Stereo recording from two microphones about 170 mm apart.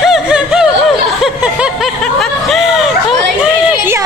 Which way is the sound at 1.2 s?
5° right (ahead or behind).